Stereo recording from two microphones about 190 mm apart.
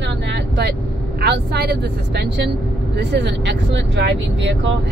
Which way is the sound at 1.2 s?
60° right (ahead or behind).